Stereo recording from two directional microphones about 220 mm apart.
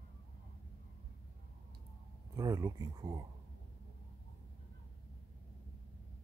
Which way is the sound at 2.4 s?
15° right (ahead or behind).